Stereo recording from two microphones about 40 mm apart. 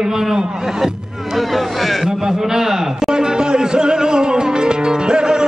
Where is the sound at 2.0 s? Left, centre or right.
Centre.